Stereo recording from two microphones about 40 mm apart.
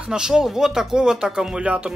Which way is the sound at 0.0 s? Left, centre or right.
Right.